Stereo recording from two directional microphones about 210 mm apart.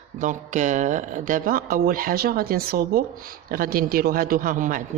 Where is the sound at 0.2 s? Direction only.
35° right (ahead or behind).